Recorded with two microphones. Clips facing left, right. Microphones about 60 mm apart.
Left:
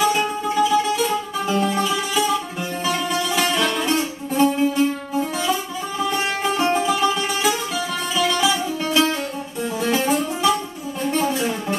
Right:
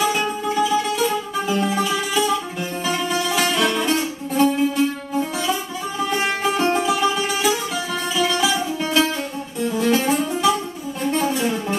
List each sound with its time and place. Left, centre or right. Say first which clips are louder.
0.0 s music: left 1 dB; centre